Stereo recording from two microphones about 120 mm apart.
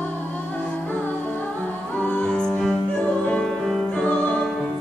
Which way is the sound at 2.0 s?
10° left (ahead or behind).